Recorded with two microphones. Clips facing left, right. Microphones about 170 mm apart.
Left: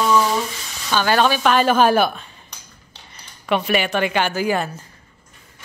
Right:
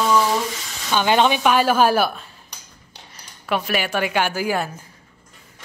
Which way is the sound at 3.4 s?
Centre (ahead or behind).